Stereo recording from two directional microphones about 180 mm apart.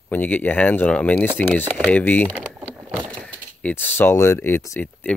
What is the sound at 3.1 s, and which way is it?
Speech, 5° left (ahead or behind).